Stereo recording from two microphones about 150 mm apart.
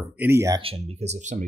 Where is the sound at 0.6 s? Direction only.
40° right (ahead or behind).